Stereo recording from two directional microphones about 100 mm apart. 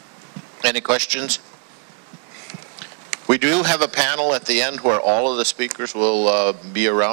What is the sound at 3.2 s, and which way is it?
Speech, 25° right (ahead or behind).